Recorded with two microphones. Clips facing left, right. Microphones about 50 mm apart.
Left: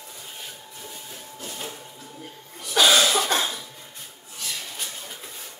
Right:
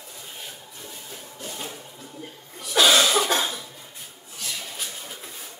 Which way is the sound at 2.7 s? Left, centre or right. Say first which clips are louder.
Even; centre.